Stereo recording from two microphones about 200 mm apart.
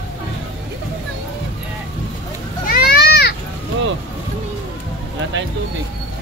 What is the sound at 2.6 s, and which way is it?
Children playing, 50° left (ahead or behind).